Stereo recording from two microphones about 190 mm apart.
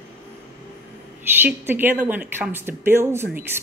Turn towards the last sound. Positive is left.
turn(degrees=-10)  # may be behind; listen again after turning